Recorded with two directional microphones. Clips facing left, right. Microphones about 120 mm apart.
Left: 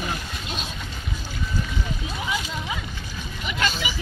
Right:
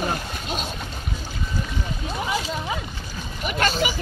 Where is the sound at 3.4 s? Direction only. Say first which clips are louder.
Right 4 dB; 45° right (ahead or behind).